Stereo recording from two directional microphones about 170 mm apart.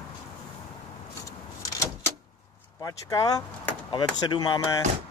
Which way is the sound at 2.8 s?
20° left (ahead or behind).